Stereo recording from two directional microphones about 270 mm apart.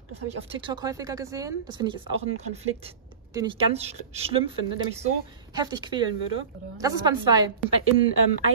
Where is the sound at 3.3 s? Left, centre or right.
Centre.